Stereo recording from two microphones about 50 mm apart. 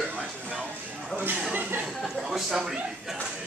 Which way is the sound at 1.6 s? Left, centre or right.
Right.